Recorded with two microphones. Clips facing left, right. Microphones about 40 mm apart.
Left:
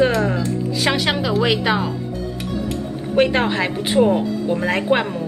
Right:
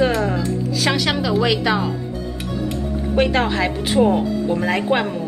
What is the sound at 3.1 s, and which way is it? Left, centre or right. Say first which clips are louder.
A woman's voice: left 1 dB; centre.